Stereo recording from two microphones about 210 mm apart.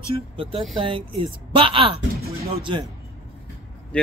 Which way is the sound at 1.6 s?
25° right (ahead or behind).